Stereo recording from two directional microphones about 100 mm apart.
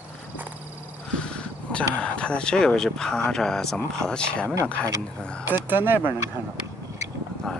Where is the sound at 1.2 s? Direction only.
10° left (ahead or behind).